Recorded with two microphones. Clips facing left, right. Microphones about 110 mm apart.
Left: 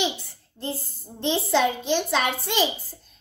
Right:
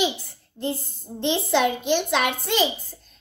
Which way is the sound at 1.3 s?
5° right (ahead or behind).